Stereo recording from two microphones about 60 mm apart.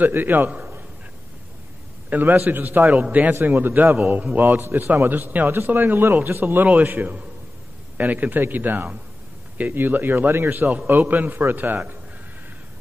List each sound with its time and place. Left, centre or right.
0.0 s a man's voice: right
2.0 s a man's voice: right